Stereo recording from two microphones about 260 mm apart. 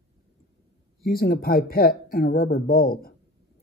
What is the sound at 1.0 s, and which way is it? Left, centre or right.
Speech, left.